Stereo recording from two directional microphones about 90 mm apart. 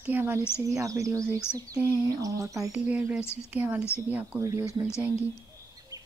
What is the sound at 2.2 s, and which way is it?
Speech, 40° right (ahead or behind).